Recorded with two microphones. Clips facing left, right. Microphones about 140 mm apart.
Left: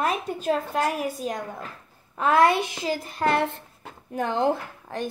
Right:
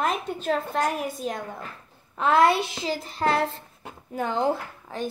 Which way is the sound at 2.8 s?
45° left (ahead or behind).